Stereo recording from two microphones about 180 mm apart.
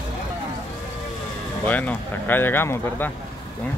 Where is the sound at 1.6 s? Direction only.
10° left (ahead or behind).